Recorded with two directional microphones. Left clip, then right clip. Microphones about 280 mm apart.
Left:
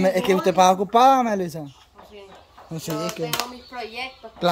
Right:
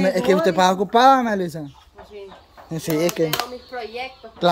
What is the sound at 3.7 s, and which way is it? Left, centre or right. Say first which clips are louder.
Speech: right 2 dB; left.